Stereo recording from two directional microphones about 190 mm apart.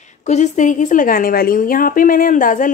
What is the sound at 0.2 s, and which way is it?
A woman's voice, 35° left (ahead or behind).